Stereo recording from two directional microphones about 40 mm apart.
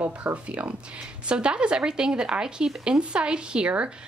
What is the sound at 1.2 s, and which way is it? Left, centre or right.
A woman's voice, right.